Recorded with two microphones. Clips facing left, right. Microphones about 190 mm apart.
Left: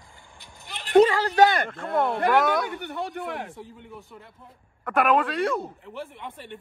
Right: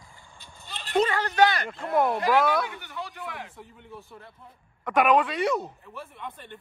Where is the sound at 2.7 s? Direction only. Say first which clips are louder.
Left 7 dB; 60° left (ahead or behind).